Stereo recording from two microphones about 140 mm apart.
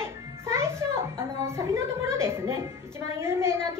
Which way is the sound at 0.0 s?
20° right (ahead or behind).